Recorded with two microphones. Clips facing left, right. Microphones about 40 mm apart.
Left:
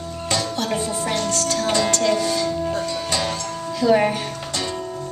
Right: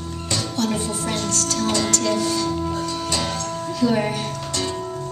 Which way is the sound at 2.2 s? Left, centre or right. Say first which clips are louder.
Left 1 dB; left.